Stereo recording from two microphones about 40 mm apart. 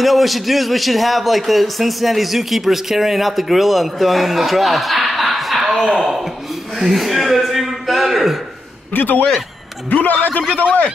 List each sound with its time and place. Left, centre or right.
0.0 s a man's voice: centre
6.8 s a sound: centre
8.9 s speech: left